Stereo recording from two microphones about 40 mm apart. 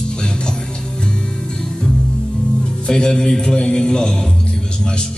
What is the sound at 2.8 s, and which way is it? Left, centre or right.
A man's voice, centre.